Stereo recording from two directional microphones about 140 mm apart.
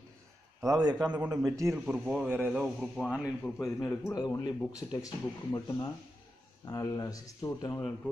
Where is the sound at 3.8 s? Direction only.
20° left (ahead or behind).